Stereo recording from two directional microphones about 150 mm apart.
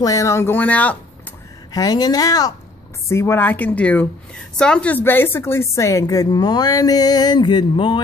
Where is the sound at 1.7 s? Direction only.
25° left (ahead or behind).